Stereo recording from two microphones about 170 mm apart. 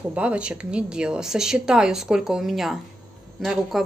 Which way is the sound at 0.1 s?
5° right (ahead or behind).